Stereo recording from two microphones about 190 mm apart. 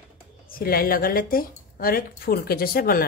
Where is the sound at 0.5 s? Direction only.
50° left (ahead or behind).